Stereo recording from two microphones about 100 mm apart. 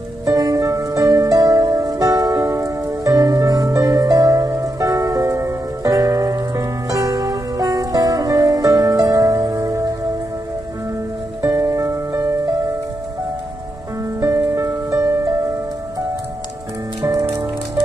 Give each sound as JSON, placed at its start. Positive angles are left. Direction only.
{"t": 0.2, "sound": "music", "side_deg": -40}
{"t": 11.4, "sound": "music", "side_deg": -35}
{"t": 14.2, "sound": "music", "side_deg": -35}
{"t": 17.0, "sound": "music", "side_deg": -35}